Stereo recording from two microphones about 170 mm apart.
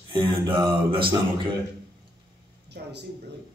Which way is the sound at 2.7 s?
75° right (ahead or behind).